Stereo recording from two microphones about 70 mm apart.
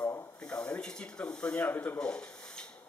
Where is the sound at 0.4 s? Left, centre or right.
Centre.